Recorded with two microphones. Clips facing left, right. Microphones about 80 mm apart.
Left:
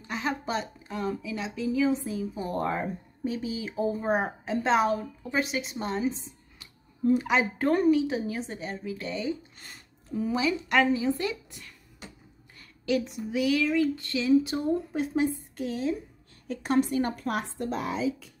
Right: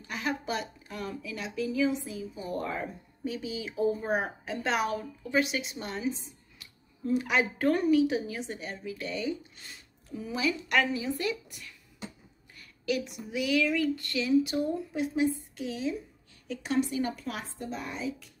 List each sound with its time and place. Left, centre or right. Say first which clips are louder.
0.0 s a woman's voice: left 2 dB; left
9.6 s music: left 1 dB; left
10.3 s a woman's voice: left 2 dB; left
12.8 s a woman's voice: left 4 dB; left